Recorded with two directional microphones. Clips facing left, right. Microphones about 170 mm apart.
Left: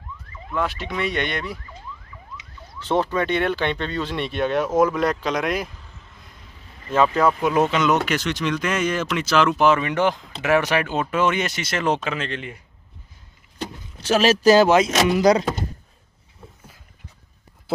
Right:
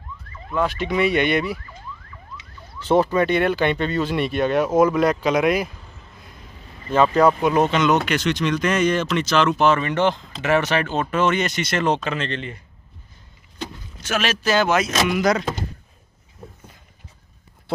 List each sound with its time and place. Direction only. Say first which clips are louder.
0.7 s speech: right 6 dB; centre (ahead or behind)
2.8 s speech: right 4 dB; 5° right (ahead or behind)
6.9 s speech: right 2 dB; centre (ahead or behind)
13.9 s speech: left 6 dB; 35° left (ahead or behind)
17.7 s speech: left 1 dB; 5° left (ahead or behind)